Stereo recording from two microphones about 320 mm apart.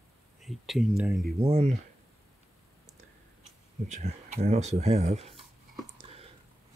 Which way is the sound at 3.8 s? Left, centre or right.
Right.